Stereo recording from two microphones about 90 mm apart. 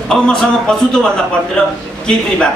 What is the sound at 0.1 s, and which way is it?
Speech, 10° left (ahead or behind).